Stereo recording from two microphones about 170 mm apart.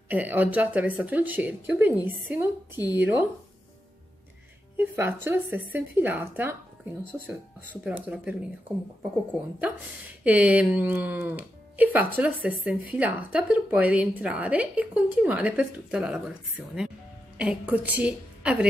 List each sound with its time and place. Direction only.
0.1 s speech: 10° right (ahead or behind)
4.7 s speech: 15° right (ahead or behind)
7.8 s speech: 10° right (ahead or behind)
10.2 s speech: 10° right (ahead or behind)